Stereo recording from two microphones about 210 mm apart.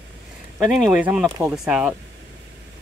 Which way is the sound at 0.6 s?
Centre (ahead or behind).